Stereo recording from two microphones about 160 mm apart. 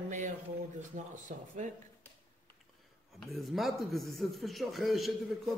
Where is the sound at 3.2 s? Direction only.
Centre (ahead or behind).